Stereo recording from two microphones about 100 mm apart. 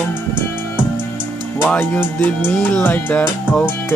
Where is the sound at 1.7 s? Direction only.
15° left (ahead or behind).